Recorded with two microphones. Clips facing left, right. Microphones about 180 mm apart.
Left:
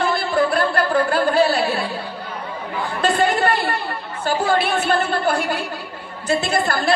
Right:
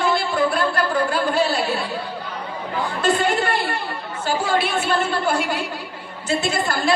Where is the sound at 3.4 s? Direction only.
55° left (ahead or behind).